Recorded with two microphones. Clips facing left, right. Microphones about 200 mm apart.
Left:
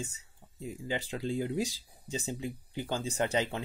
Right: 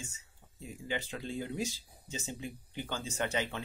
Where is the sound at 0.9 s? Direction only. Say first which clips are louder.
Left 4 dB; 30° left (ahead or behind).